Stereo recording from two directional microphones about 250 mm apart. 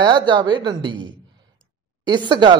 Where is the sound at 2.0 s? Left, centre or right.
Centre.